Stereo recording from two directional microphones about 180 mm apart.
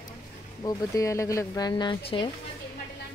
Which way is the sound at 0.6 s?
20° left (ahead or behind).